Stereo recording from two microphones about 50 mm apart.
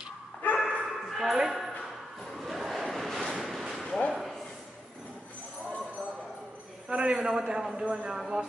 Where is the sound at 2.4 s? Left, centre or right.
Centre.